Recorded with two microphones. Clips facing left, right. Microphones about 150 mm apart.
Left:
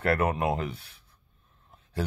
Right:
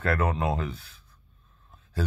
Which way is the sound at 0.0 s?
25° left (ahead or behind).